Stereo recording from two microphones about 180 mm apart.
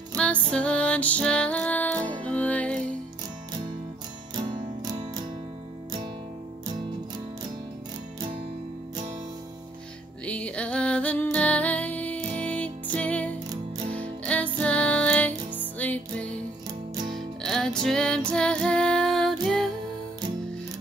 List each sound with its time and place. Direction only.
0.1 s music: 5° left (ahead or behind)
4.4 s music: 25° right (ahead or behind)
10.2 s music: 5° left (ahead or behind)
18.3 s female singing: 5° left (ahead or behind)
19.4 s music: centre (ahead or behind)